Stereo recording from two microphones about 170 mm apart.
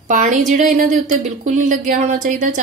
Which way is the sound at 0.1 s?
45° right (ahead or behind).